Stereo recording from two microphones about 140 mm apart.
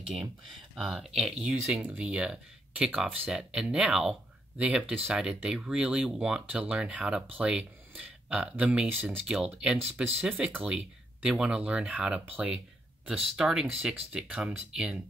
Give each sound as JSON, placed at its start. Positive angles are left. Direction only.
{"t": 0.7, "sound": "speech", "side_deg": 0}